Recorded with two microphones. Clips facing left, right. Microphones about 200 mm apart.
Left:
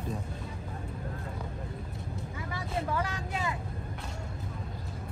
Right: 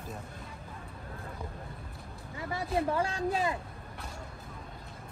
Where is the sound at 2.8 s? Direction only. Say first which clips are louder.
Right 4 dB; 30° right (ahead or behind).